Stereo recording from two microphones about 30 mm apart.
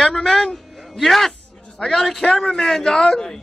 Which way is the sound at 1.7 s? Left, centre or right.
Centre.